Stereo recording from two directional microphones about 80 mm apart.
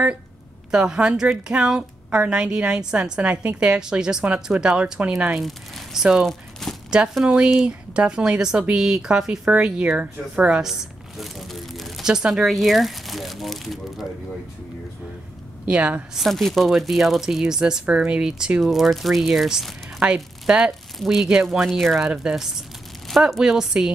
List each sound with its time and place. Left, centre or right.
0.7 s a woman's voice: centre
6.2 s a sound: centre
7.2 s a woman's voice: centre
15.7 s a woman's voice: centre
16.2 s a woman's voice: centre
18.6 s speech: centre
22.0 s a woman's voice: centre